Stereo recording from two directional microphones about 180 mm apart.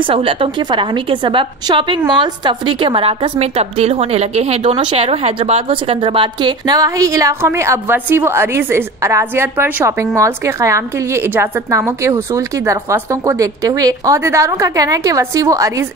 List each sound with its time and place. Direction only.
0.0 s a woman's voice: 30° right (ahead or behind)